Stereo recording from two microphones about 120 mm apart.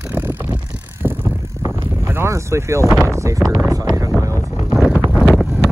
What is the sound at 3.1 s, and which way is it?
Speech, 25° right (ahead or behind).